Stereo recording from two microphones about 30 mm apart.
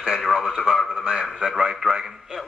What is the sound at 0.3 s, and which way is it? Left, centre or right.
Speech, right.